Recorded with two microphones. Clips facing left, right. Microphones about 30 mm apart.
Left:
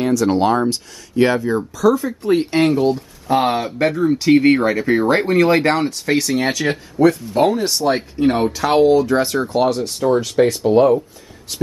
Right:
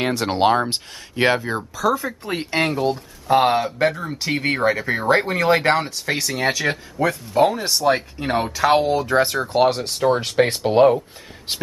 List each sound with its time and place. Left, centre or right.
0.0 s speech: right
0.3 s speech: right
1.6 s speech: centre
9.5 s speech: centre